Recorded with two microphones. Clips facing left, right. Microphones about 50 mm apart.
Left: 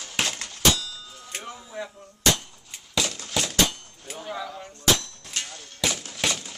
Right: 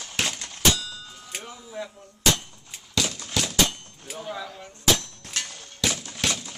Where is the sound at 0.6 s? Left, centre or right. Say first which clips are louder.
Left 1 dB; centre.